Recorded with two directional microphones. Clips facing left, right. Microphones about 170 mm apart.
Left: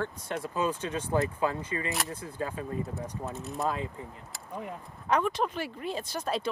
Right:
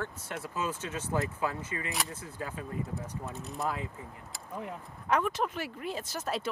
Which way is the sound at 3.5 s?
25° left (ahead or behind).